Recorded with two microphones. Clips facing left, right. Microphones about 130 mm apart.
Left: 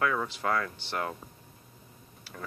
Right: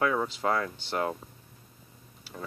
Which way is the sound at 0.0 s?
25° right (ahead or behind).